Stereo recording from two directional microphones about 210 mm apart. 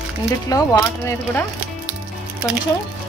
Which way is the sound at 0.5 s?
15° left (ahead or behind).